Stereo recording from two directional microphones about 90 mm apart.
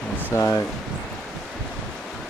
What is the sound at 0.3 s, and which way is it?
Speech, 30° left (ahead or behind).